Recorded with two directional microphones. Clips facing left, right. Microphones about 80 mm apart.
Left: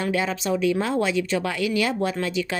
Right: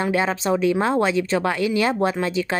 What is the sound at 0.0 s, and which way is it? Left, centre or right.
Speech, right.